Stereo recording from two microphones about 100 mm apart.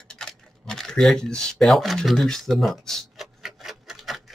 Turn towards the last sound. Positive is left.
turn(degrees=0)  # may be behind; listen again after turning